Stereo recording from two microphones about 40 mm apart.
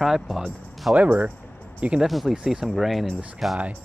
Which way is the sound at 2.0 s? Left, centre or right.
Centre.